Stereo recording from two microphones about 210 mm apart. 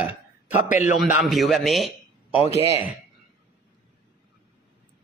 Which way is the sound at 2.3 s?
30° left (ahead or behind).